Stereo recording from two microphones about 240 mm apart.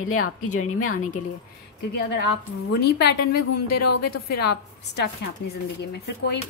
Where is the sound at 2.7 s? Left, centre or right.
Left.